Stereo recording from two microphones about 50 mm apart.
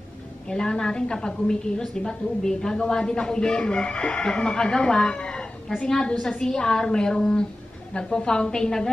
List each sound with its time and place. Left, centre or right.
0.5 s a woman's voice: centre